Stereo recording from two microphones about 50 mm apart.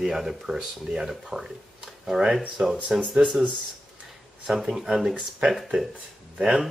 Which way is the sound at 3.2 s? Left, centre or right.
Right.